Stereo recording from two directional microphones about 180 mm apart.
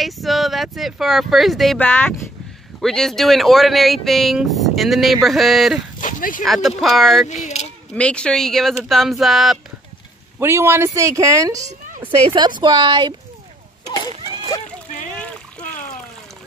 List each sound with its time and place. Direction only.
0.0 s speech: centre (ahead or behind)
5.9 s a sound: 45° left (ahead or behind)
6.4 s speech: centre (ahead or behind)
7.4 s a sound: 40° left (ahead or behind)
7.9 s speech: 5° left (ahead or behind)
10.4 s a woman's voice: 15° right (ahead or behind)
13.9 s a sound: 30° right (ahead or behind)
14.2 s splash: 25° right (ahead or behind)
15.1 s splash: 5° left (ahead or behind)